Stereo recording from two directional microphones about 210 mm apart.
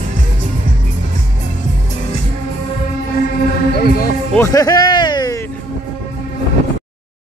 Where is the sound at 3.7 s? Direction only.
45° left (ahead or behind).